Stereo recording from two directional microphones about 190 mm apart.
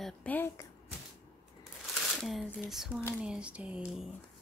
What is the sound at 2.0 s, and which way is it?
A woman's voice, centre (ahead or behind).